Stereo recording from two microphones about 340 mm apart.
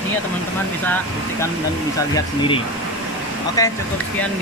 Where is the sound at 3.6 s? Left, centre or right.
Centre.